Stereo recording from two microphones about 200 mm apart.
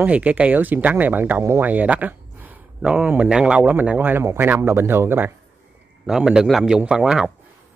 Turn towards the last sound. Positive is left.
turn(degrees=-5)  # may be behind; listen again after turning